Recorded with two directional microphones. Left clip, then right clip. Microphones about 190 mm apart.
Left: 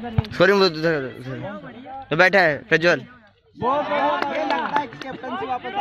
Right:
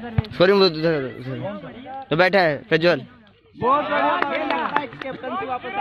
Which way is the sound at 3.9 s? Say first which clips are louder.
Right 1 dB; 55° left (ahead or behind).